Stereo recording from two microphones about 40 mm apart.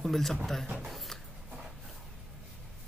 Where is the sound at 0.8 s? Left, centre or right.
Centre.